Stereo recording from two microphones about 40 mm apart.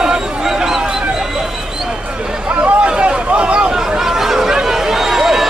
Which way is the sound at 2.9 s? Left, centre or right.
Right.